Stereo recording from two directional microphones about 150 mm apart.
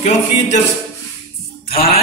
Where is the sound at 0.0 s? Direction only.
50° left (ahead or behind).